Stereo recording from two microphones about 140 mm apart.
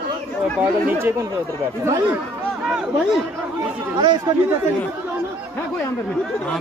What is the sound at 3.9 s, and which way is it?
Speech, 30° right (ahead or behind).